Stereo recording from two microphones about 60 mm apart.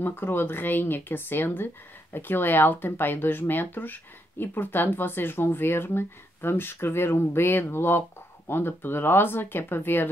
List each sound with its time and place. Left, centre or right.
0.0 s speech: left